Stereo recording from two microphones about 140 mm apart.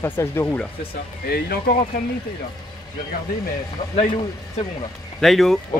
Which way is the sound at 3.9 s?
40° left (ahead or behind).